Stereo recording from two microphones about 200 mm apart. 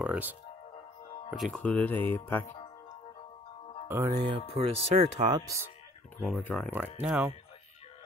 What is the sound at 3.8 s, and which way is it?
Speech, 15° right (ahead or behind).